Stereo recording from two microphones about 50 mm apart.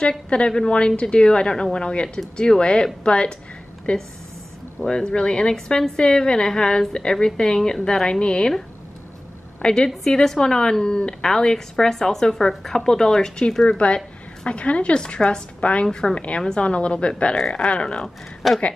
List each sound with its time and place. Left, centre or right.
0.5 s a woman's voice: centre
9.6 s a woman's voice: centre
13.7 s a woman's voice: left
15.9 s speech: centre
16.2 s a woman's voice: left
18.4 s speech: centre